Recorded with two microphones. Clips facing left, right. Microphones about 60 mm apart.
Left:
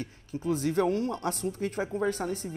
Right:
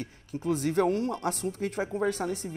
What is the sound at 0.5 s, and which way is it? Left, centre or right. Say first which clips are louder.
Speech: right 1 dB; right.